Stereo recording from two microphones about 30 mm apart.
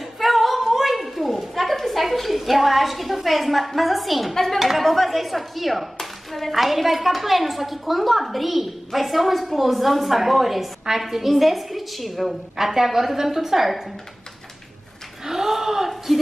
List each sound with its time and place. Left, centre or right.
0.2 s a sound: centre
4.6 s a woman's voice: centre
4.8 s speech: centre
12.5 s a woman's voice: centre
15.2 s a woman's voice: centre